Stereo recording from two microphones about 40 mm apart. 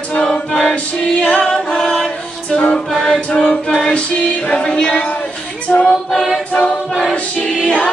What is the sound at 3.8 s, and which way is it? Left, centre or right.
Music, left.